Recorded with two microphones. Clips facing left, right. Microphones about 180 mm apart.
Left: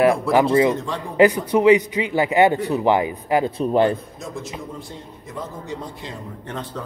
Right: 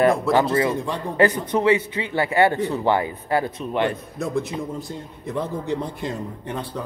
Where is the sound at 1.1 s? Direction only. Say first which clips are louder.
Left 4 dB; 10° left (ahead or behind).